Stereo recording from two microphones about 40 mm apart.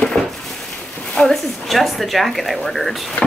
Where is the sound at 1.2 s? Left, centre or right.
Left.